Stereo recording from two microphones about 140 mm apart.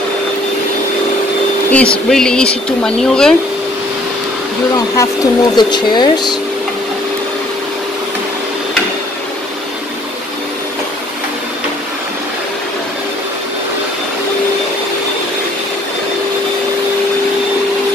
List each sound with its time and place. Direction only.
1.7 s speech: 10° left (ahead or behind)
4.9 s speech: 30° left (ahead or behind)